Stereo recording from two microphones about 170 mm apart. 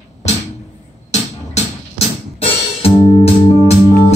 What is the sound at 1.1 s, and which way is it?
Music, 40° left (ahead or behind).